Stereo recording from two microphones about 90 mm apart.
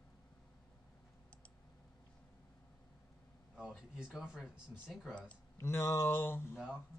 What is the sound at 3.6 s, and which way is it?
Speech, 10° right (ahead or behind).